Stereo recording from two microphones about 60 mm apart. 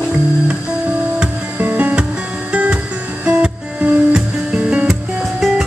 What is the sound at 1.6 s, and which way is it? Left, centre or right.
Music, right.